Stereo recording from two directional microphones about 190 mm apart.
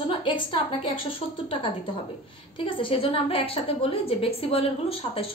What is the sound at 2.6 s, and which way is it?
A woman's voice, 30° left (ahead or behind).